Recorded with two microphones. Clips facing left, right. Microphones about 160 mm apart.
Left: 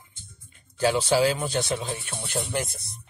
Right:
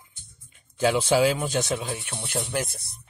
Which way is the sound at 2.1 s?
Centre (ahead or behind).